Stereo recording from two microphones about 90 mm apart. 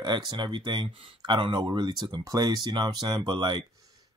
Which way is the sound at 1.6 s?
50° right (ahead or behind).